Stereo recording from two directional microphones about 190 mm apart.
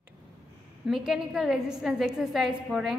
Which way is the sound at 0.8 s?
5° right (ahead or behind).